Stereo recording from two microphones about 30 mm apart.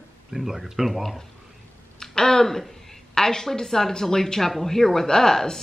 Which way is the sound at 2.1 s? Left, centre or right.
Centre.